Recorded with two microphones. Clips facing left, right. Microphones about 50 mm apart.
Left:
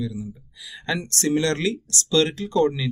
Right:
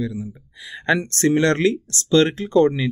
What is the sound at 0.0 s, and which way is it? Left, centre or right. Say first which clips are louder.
Speech: right 3 dB; right.